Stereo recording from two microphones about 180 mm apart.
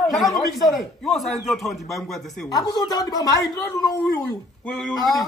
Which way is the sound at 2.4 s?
20° left (ahead or behind).